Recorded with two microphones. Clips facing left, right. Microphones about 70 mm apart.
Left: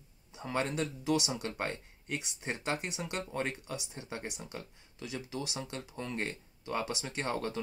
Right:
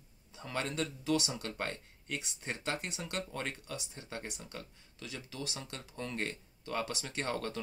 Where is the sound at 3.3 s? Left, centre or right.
Left.